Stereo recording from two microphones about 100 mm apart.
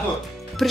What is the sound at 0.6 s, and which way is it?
Speech, centre (ahead or behind).